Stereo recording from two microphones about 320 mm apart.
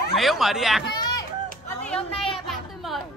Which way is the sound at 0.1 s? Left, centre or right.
Centre.